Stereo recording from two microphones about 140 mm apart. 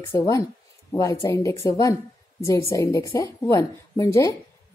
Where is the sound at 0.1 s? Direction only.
20° left (ahead or behind).